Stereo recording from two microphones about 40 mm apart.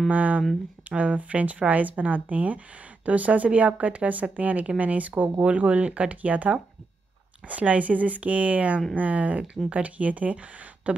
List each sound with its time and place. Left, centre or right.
0.1 s speech: right